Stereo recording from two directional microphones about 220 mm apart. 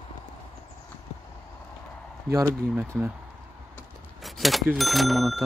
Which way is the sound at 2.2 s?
10° right (ahead or behind).